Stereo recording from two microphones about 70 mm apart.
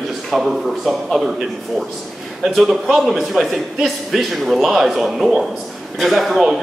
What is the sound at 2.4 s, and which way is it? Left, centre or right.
Speech, centre.